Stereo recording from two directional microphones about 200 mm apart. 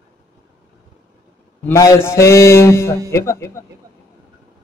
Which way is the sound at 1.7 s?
15° left (ahead or behind).